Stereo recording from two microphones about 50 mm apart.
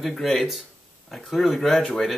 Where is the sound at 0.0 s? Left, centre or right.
Centre.